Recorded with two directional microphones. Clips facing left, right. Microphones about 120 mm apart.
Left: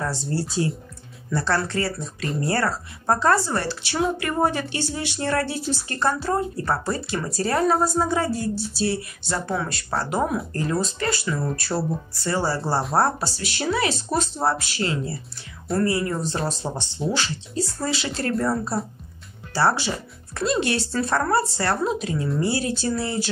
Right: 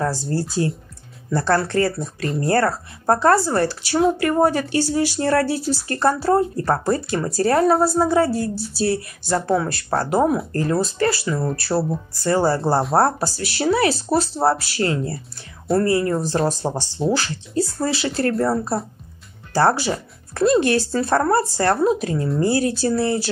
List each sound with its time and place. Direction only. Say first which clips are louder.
0.0 s speech: right 4 dB; 40° right (ahead or behind)